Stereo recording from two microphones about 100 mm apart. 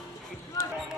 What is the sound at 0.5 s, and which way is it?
Basketball bounce, 35° left (ahead or behind).